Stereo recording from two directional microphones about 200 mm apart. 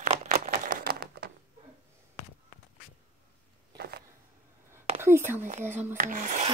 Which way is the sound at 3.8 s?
55° right (ahead or behind).